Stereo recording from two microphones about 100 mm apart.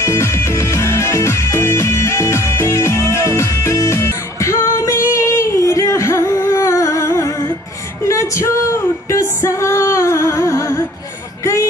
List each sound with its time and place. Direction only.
0.0 s music: 30° left (ahead or behind)